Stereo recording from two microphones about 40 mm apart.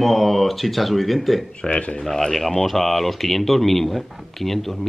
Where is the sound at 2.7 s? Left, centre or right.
Centre.